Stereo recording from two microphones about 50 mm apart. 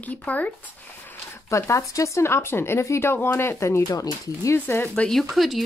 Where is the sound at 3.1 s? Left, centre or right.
Left.